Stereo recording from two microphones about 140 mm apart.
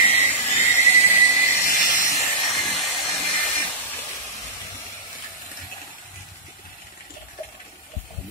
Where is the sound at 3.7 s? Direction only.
15° left (ahead or behind).